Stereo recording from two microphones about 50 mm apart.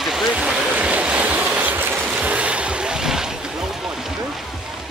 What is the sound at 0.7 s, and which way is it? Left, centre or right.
Waves, right.